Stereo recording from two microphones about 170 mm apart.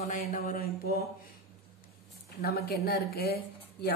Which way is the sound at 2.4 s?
65° left (ahead or behind).